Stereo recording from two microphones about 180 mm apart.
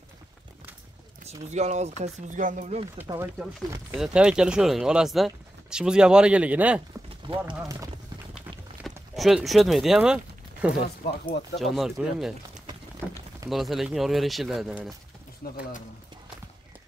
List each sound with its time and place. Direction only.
1.5 s speech: 40° right (ahead or behind)
3.1 s speech: 20° right (ahead or behind)
3.9 s speech: 5° right (ahead or behind)
8.8 s speech: centre (ahead or behind)
11.1 s speech: 65° left (ahead or behind)
11.6 s speech: centre (ahead or behind)
13.5 s speech: centre (ahead or behind)
15.4 s speech: 55° left (ahead or behind)